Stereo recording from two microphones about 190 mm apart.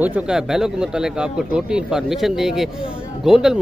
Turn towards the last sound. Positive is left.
turn(degrees=0)  # may be behind; listen again after turning